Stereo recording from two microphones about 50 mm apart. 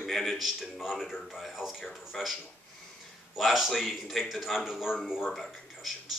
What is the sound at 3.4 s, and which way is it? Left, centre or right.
A man's voice, centre.